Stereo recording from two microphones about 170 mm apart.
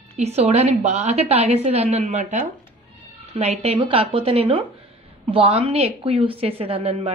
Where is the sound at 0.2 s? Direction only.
40° right (ahead or behind).